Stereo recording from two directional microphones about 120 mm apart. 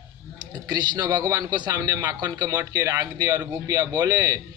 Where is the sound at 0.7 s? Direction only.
30° right (ahead or behind).